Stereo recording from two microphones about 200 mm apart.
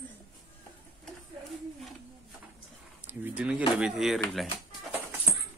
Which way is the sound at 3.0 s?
5° right (ahead or behind).